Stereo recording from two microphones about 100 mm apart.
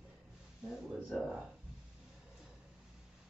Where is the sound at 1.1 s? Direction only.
5° right (ahead or behind).